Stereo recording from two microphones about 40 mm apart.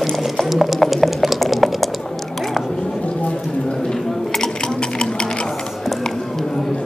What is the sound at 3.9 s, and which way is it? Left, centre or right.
Sewing machine, centre.